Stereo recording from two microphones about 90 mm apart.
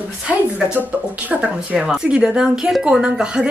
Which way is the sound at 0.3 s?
15° right (ahead or behind).